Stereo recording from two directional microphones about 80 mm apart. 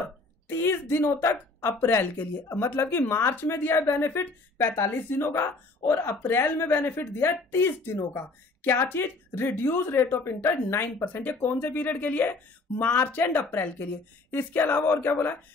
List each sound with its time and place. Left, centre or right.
0.5 s a woman's voice: left